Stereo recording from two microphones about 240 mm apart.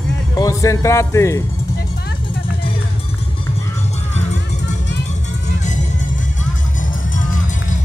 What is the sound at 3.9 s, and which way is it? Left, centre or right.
Music, left.